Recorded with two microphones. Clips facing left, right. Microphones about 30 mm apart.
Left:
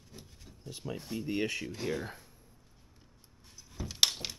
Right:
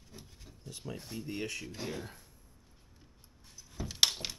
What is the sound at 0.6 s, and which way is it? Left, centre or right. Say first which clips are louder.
Speech: left 3 dB; centre.